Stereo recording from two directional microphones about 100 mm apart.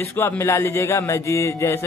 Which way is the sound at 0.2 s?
30° left (ahead or behind).